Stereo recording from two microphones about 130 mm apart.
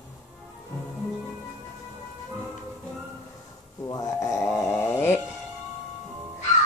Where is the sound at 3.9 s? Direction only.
25° left (ahead or behind).